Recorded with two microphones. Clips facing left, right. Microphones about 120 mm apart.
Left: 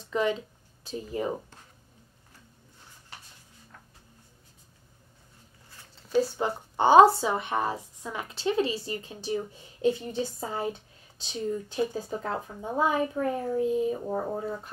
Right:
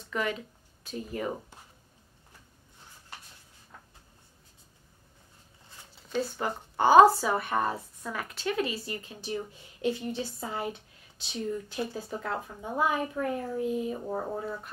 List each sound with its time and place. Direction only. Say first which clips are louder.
0.1 s a woman's voice: left 5 dB; 25° left (ahead or behind)
5.9 s a sound: left 6 dB; 5° left (ahead or behind)
6.3 s a woman's voice: left 3 dB; 25° left (ahead or behind)
11.9 s a woman's voice: left 2 dB; 20° left (ahead or behind)
14.0 s speech: left 2 dB; 15° left (ahead or behind)